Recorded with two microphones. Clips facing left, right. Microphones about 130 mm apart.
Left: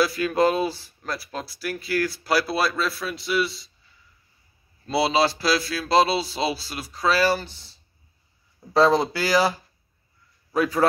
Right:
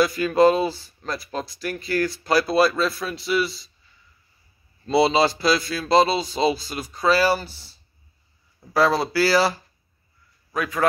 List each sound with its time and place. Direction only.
0.0 s speech: centre (ahead or behind)
4.8 s speech: centre (ahead or behind)
8.7 s speech: 20° left (ahead or behind)
10.5 s a man's voice: 30° left (ahead or behind)